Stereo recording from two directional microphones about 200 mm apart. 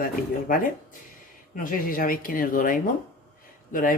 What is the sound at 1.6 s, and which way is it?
Speech, 45° left (ahead or behind).